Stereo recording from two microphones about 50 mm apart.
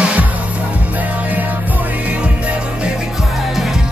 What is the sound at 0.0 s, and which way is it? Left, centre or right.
Music, right.